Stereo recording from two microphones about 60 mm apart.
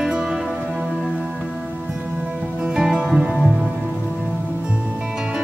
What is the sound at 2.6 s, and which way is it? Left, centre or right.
Music, centre.